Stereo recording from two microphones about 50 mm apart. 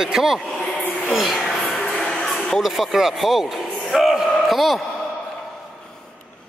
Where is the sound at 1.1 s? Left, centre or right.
Centre.